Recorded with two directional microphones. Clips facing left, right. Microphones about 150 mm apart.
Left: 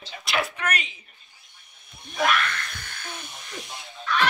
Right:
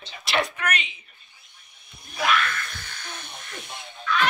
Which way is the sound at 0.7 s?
40° left (ahead or behind).